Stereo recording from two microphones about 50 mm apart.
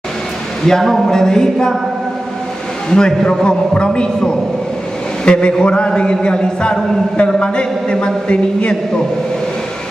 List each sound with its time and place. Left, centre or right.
0.7 s a man's voice: centre
2.9 s a man's voice: centre